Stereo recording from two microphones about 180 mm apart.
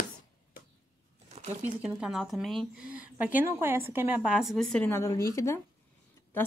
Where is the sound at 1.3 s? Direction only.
40° right (ahead or behind).